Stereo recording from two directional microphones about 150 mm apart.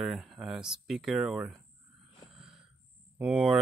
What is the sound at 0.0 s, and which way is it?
Speech, 5° right (ahead or behind).